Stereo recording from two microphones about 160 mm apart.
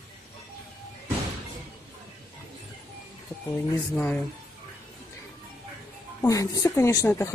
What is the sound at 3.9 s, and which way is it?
Speech, 5° left (ahead or behind).